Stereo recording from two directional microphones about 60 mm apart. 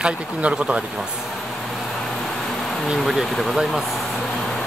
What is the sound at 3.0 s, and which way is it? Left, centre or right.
Speech, centre.